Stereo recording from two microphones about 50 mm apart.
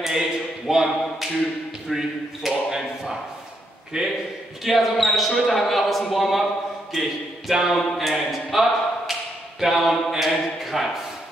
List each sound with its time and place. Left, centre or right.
0.0 s speech: centre
4.6 s speech: centre
10.6 s a sound: centre